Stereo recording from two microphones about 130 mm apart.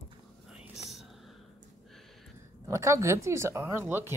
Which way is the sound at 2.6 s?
25° right (ahead or behind).